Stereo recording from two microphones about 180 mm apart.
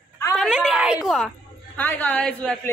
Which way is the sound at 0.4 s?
Centre (ahead or behind).